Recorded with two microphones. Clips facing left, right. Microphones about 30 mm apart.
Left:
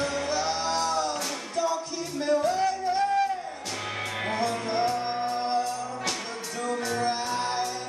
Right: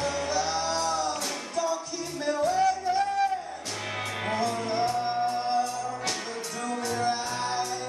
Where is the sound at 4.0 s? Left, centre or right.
Centre; by 5.6 s left.